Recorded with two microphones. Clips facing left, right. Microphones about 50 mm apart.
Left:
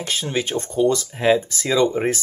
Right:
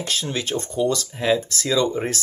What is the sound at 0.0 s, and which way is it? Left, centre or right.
Speech, centre.